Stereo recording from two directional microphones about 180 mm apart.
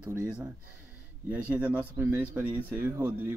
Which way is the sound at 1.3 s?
10° right (ahead or behind).